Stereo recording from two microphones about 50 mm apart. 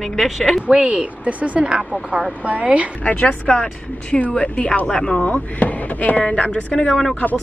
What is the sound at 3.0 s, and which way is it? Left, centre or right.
Speech, left.